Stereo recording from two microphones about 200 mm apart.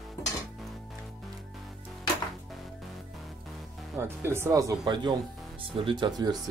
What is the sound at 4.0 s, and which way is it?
Speech, 10° right (ahead or behind).